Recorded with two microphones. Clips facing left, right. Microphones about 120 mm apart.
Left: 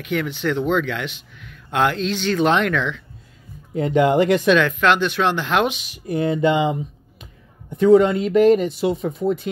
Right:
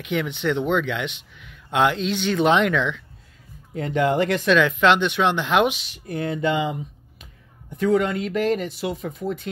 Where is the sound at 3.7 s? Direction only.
20° left (ahead or behind).